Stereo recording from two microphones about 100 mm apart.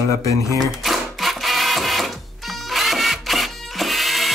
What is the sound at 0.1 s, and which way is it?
Speech, 35° left (ahead or behind).